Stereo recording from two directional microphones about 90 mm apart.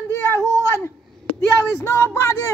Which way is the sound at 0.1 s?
30° left (ahead or behind).